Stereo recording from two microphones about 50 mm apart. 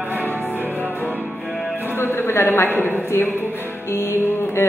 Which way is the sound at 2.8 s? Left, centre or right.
Left.